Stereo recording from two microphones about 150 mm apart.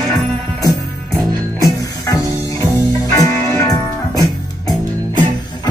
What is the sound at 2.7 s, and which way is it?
Music, 20° left (ahead or behind).